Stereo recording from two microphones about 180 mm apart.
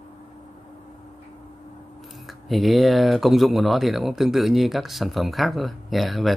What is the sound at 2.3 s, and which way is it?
Speech, centre (ahead or behind).